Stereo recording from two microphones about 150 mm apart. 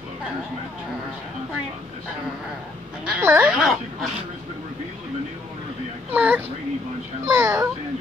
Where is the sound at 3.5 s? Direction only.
5° right (ahead or behind).